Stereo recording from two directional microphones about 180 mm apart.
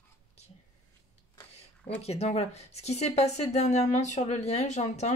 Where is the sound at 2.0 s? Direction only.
35° left (ahead or behind).